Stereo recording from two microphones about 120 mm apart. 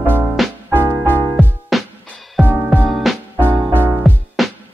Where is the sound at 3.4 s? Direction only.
15° right (ahead or behind).